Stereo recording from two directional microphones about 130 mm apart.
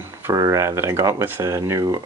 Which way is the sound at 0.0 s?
20° right (ahead or behind).